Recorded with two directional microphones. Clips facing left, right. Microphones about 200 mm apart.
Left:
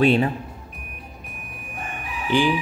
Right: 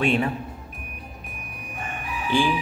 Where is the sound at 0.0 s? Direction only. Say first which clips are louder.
Left 4 dB; 35° left (ahead or behind).